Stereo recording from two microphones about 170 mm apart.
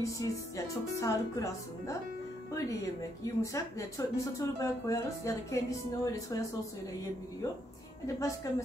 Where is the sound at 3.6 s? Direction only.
20° left (ahead or behind).